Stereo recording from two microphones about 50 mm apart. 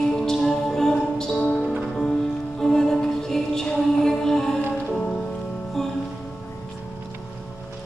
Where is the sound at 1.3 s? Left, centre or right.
Left.